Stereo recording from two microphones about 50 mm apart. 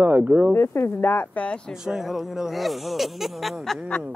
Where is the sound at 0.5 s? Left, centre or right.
Left.